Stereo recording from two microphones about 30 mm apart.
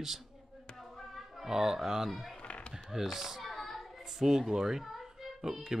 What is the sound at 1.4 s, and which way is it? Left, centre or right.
Speech, centre.